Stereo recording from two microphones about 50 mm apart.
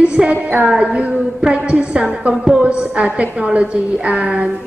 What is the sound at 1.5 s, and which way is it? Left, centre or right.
A woman's voice, right.